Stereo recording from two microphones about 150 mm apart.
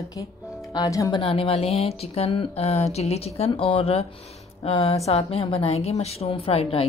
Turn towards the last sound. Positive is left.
turn(degrees=40)  # may be behind; listen again after turning